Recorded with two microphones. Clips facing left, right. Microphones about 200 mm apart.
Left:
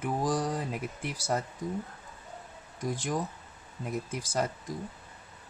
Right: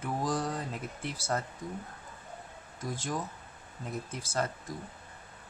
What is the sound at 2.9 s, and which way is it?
Speech, 15° left (ahead or behind).